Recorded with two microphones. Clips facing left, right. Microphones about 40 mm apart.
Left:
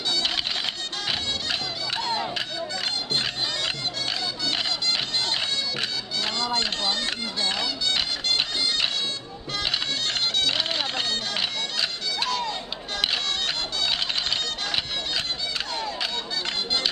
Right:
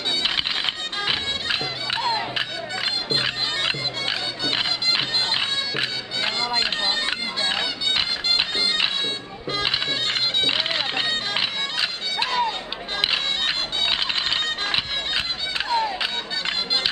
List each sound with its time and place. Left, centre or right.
0.2 s music: right